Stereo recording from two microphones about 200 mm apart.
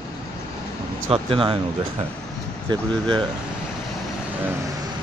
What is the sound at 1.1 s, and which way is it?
Speech, 25° right (ahead or behind).